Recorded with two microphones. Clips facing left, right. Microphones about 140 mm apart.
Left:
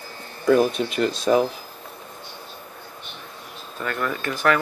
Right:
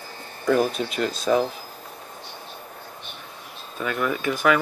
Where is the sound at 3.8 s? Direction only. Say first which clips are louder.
Right 2 dB; 10° right (ahead or behind).